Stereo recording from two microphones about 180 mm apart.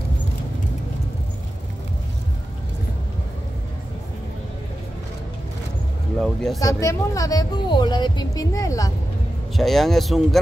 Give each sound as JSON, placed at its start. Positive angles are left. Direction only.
{"t": 6.1, "sound": "a sound", "side_deg": 0}
{"t": 6.6, "sound": "speech", "side_deg": 15}
{"t": 9.6, "sound": "speech", "side_deg": 0}